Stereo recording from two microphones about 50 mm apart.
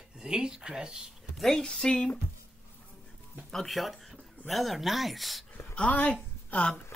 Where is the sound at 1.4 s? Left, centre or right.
Centre.